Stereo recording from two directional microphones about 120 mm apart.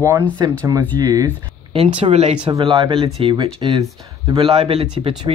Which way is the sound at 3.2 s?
45° right (ahead or behind).